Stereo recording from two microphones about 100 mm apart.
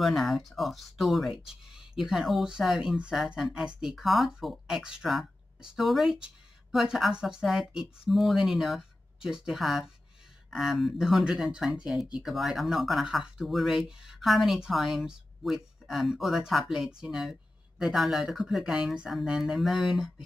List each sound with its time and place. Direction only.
0.0 s speech: centre (ahead or behind)